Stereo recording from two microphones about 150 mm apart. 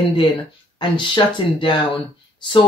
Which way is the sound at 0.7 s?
30° left (ahead or behind).